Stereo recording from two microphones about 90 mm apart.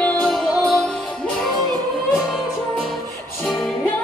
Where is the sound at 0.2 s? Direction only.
5° left (ahead or behind).